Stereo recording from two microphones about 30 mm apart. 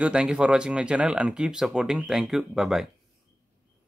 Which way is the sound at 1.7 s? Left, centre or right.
Centre.